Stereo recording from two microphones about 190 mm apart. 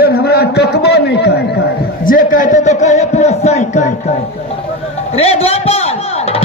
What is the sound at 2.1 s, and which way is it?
A man's voice, 45° left (ahead or behind).